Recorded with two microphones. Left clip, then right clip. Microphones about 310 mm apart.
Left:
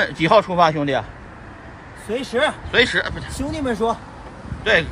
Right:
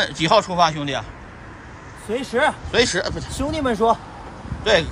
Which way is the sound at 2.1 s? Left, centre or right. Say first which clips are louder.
Even; centre.